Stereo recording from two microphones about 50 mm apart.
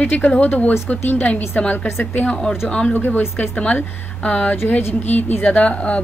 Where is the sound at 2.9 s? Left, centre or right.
Left.